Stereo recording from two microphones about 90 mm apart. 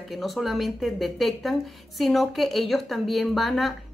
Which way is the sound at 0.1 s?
Centre (ahead or behind).